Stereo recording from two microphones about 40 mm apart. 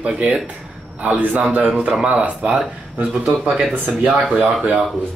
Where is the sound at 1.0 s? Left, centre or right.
Right.